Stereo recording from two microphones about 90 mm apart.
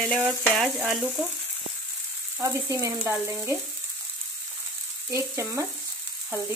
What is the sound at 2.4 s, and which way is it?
Speech, 30° right (ahead or behind).